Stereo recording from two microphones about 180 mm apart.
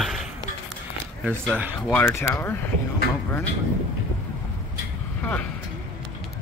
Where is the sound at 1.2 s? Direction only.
5° left (ahead or behind).